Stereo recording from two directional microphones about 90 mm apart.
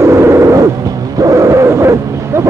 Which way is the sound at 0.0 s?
30° right (ahead or behind).